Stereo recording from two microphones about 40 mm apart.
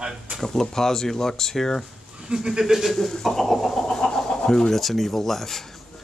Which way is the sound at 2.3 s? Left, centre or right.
Centre.